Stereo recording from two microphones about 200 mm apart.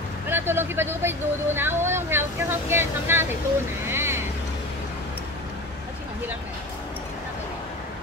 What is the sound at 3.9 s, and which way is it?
Boat, 10° right (ahead or behind).